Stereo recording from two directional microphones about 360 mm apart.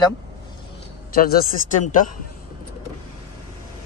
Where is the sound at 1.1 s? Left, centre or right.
Left.